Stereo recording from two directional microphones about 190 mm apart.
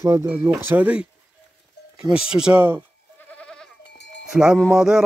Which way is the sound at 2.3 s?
5° right (ahead or behind).